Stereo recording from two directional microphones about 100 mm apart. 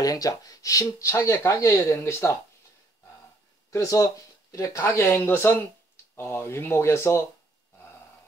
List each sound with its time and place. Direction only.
0.0 s speech: 35° left (ahead or behind)
3.7 s speech: 35° left (ahead or behind)